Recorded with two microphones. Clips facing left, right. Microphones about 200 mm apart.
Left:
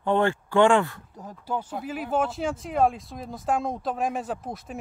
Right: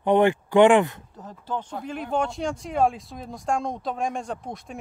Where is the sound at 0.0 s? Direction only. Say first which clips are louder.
Right 4 dB; 15° right (ahead or behind).